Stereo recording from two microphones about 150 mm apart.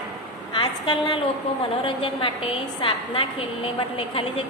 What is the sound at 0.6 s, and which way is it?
A woman's voice, 30° left (ahead or behind).